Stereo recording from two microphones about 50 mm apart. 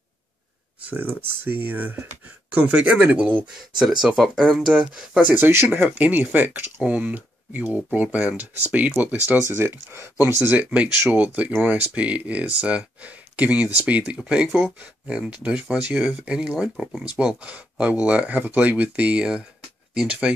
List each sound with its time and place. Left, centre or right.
0.9 s speech: right
2.2 s speech: right
3.7 s speech: centre
5.4 s speech: right
5.7 s speech: right
9.5 s speech: right
10.1 s speech: right
10.6 s speech: right
14.2 s speech: centre
19.9 s speech: centre